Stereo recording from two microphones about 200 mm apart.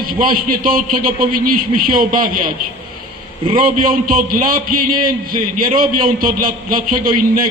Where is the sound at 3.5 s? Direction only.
45° right (ahead or behind).